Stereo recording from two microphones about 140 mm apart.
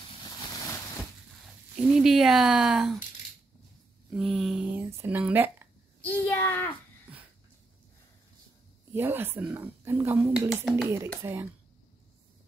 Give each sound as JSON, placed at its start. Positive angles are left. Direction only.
{"t": 2.0, "sound": "speech", "side_deg": -5}
{"t": 4.1, "sound": "speech", "side_deg": 0}
{"t": 4.7, "sound": "speech", "side_deg": -15}
{"t": 6.0, "sound": "a child's voice", "side_deg": 15}
{"t": 8.9, "sound": "speech", "side_deg": -15}
{"t": 10.5, "sound": "speech", "side_deg": 0}
{"t": 11.2, "sound": "speech", "side_deg": -20}